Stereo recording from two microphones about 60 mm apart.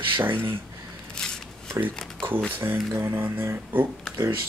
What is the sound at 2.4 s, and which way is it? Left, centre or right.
Speech, right.